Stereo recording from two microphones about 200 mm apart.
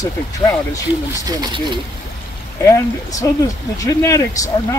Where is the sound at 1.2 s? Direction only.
20° right (ahead or behind).